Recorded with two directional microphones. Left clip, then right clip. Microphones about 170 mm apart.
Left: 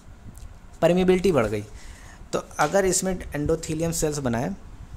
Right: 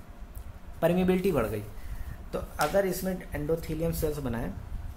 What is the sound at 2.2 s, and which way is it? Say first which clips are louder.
Speech: left 6 dB; 65° left (ahead or behind).